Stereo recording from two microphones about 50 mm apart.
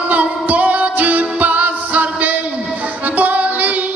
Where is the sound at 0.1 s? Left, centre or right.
Right.